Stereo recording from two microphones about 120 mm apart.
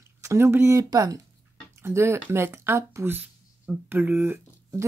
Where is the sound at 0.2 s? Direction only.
20° right (ahead or behind).